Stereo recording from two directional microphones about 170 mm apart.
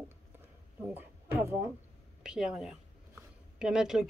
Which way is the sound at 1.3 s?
15° right (ahead or behind).